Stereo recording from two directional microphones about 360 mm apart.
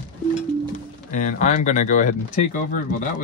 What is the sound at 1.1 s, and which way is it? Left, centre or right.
Speech, centre.